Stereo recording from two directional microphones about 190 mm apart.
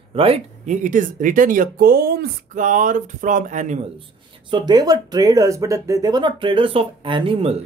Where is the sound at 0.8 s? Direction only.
45° right (ahead or behind).